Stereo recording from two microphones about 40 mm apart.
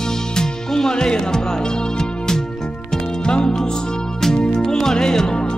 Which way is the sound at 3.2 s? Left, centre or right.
Left.